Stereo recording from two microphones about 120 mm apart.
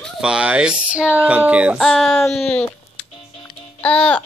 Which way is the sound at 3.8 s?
10° left (ahead or behind).